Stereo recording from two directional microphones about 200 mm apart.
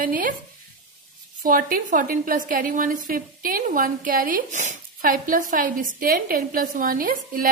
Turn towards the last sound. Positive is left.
turn(degrees=-45)  # may be behind; listen again after turning